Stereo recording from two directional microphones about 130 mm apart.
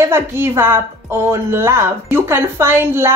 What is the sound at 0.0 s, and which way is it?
A woman's voice, 20° right (ahead or behind).